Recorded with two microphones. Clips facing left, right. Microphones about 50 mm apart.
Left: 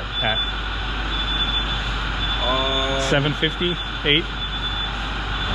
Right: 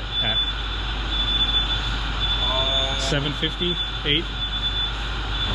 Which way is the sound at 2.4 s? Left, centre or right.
Left.